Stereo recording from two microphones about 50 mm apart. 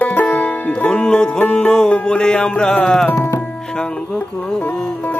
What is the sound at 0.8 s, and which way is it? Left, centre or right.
Music, left.